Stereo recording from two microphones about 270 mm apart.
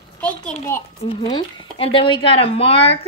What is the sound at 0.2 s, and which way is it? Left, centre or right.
Speech, centre.